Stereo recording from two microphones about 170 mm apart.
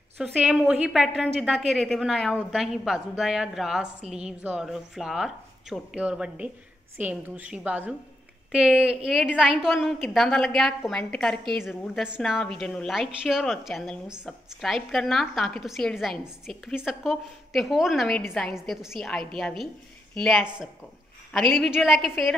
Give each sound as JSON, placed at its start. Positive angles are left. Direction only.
{"t": 0.2, "sound": "a woman's voice", "side_deg": -5}